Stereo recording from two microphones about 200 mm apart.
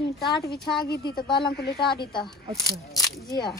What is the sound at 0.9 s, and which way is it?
Speech, 50° left (ahead or behind).